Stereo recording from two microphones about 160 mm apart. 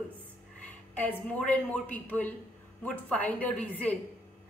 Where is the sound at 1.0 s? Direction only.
10° left (ahead or behind).